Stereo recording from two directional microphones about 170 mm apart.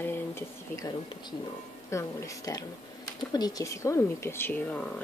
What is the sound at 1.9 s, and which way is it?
Speech, 20° left (ahead or behind).